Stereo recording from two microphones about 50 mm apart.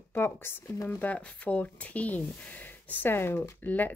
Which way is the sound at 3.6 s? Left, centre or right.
Left.